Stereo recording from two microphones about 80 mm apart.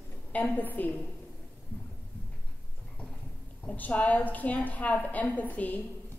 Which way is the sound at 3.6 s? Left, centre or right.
Centre.